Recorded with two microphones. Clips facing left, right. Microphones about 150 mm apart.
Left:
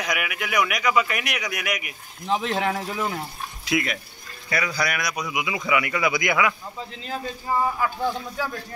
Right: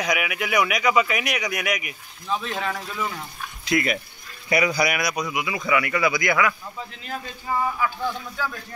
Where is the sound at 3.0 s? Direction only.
40° left (ahead or behind).